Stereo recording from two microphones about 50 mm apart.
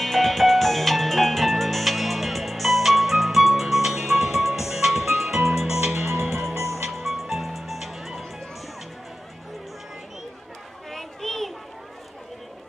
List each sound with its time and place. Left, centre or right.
0.0 s music: centre
10.9 s children playing: centre